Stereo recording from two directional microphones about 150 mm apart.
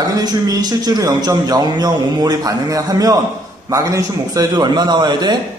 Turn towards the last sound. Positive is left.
turn(degrees=-30)  # may be behind; listen again after turning